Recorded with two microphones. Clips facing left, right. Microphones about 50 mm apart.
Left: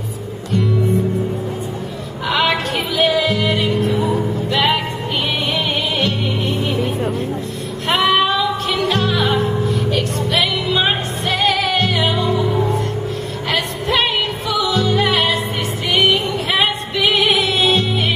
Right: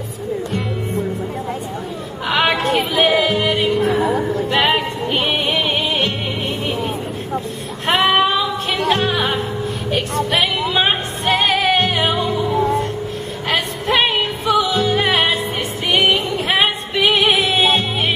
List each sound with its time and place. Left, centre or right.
2.2 s music: right
3.5 s music: centre
3.9 s music: right
7.9 s music: right